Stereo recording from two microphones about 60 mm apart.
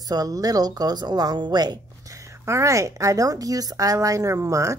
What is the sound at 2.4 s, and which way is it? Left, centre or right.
A woman's voice, right.